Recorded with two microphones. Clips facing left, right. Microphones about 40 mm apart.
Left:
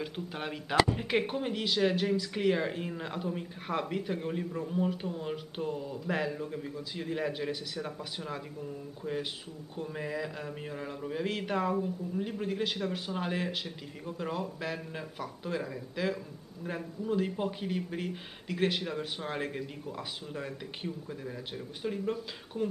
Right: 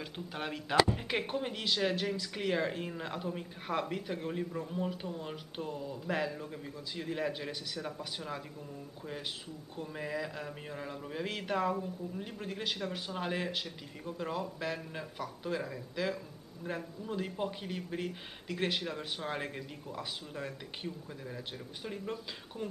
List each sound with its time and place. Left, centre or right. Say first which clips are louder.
0.0 s speech: left 3 dB; centre